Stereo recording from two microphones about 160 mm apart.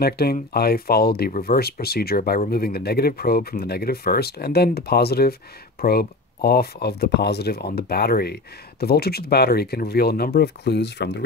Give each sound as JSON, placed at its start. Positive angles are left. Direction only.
{"t": 0.0, "sound": "speech", "side_deg": 75}